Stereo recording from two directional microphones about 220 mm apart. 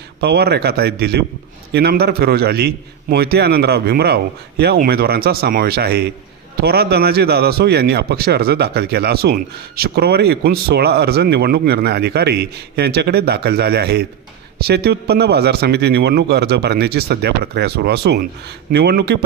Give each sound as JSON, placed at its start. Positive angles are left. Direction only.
{"t": 0.2, "sound": "a man's voice", "side_deg": -45}